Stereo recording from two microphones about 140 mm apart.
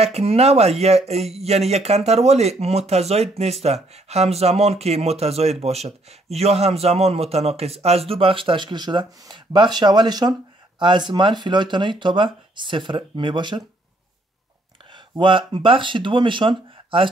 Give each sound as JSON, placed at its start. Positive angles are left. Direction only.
{"t": 0.0, "sound": "speech", "side_deg": -45}
{"t": 14.9, "sound": "speech", "side_deg": -35}